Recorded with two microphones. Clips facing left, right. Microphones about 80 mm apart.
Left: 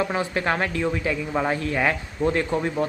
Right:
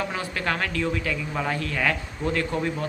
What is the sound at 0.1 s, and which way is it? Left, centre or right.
Speech, left.